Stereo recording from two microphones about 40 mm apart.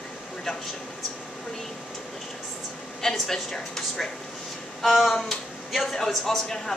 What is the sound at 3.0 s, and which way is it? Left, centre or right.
A woman's voice, centre.